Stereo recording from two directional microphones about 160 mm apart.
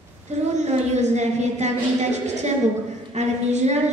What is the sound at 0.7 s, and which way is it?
A woman's voice, 45° right (ahead or behind).